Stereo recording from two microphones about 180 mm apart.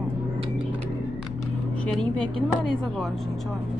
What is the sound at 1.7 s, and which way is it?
A woman's voice, 5° left (ahead or behind).